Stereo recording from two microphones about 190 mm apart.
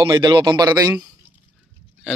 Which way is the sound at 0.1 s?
20° right (ahead or behind).